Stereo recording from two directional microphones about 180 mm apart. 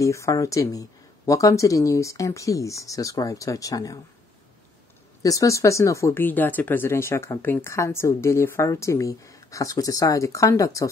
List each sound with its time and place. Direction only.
0.0 s speech: 15° left (ahead or behind)
5.2 s speech: 20° left (ahead or behind)